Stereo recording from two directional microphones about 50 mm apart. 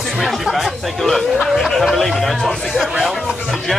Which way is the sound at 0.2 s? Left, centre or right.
Centre.